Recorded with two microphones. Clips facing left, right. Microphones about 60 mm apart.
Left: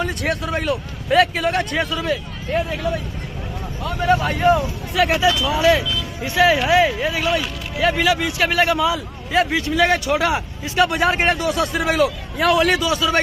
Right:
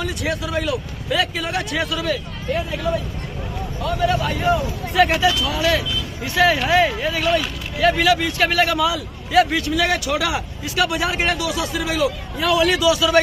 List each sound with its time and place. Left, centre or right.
0.2 s speech: left
1.8 s speech: centre
4.1 s a man's voice: left
4.4 s speech: left
4.9 s speech: centre
5.2 s speech: left
6.5 s speech: centre
8.6 s a man's voice: left